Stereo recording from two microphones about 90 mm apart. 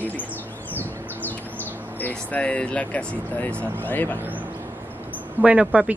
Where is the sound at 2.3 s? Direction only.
15° left (ahead or behind).